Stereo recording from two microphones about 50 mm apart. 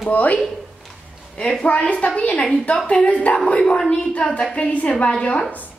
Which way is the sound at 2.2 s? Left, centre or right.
Left.